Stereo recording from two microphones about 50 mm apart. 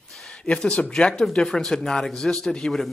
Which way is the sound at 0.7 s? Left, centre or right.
Left.